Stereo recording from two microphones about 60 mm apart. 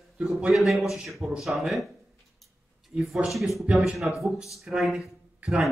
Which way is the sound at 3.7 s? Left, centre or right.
Centre.